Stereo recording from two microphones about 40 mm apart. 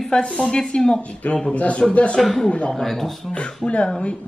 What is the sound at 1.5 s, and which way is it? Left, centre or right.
Speech, left.